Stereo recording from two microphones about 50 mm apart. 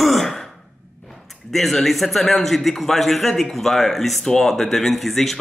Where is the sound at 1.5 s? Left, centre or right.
Centre.